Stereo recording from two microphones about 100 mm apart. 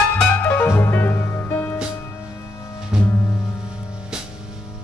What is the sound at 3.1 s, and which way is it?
Music, 30° left (ahead or behind).